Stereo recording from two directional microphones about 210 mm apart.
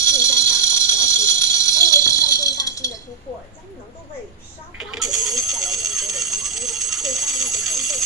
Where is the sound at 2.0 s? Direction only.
20° left (ahead or behind).